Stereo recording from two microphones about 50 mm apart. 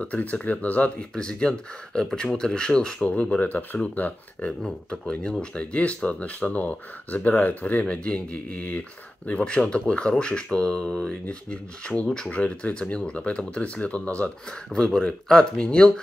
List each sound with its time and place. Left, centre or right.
0.0 s speech: left
1.1 s speech: centre
3.1 s speech: left
4.5 s speech: centre